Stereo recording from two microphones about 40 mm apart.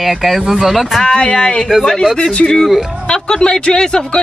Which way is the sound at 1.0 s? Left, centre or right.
Left.